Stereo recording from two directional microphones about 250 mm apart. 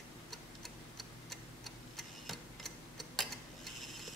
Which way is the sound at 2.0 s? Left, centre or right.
Centre.